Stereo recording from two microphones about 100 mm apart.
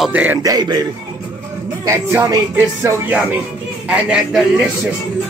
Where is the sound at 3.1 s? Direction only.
10° right (ahead or behind).